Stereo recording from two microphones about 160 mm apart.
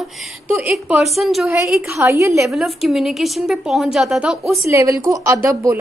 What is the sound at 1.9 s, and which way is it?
Speech, 15° right (ahead or behind).